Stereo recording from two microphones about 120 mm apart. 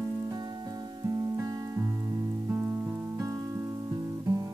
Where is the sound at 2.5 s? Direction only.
15° right (ahead or behind).